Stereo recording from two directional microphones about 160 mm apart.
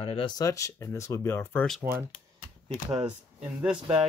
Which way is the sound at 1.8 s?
15° right (ahead or behind).